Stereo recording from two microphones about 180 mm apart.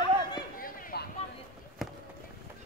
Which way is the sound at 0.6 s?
55° left (ahead or behind).